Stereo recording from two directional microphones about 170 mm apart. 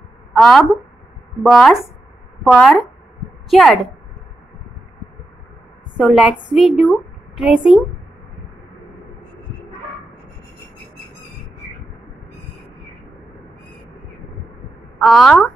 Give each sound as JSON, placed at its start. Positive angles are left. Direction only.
{"t": 0.4, "sound": "a woman's voice", "side_deg": 0}
{"t": 5.9, "sound": "a woman's voice", "side_deg": 0}
{"t": 15.0, "sound": "a woman's voice", "side_deg": 0}